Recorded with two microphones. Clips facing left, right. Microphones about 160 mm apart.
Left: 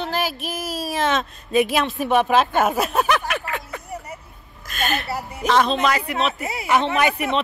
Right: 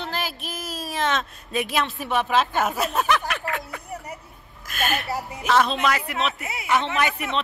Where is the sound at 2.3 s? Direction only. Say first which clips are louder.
Left 4 dB; 55° left (ahead or behind).